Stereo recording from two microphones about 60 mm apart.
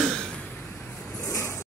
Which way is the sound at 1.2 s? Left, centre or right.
Left.